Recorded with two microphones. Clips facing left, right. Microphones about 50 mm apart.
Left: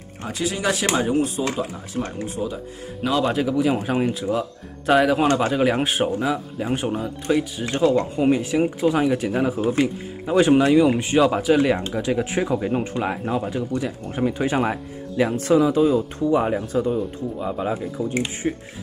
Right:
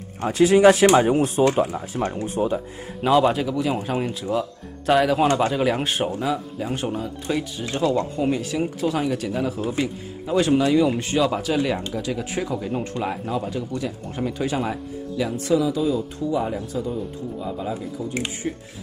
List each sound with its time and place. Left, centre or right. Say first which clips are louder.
0.2 s speech: right 10 dB; right
1.2 s speech: right 5 dB; right
3.0 s speech: right 4 dB; centre
3.4 s speech: left 3 dB; centre
7.8 s speech: left 3 dB; centre
8.8 s speech: left 3 dB; centre
9.1 s speech: left 3 dB; left
11.0 s speech: left 3 dB; centre; by 18.0 s left